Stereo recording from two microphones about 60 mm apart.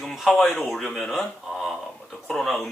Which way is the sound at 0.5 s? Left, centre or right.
Centre.